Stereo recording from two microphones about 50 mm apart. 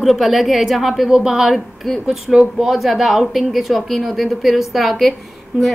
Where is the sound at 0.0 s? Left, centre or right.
Centre.